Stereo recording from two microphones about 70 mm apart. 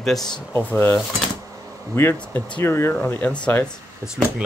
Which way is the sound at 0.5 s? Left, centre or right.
Left.